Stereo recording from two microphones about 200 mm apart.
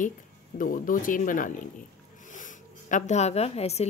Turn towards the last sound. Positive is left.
turn(degrees=30)  # may be behind; listen again after turning